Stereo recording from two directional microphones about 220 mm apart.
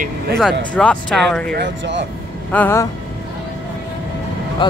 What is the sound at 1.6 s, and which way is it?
Speech, 55° right (ahead or behind).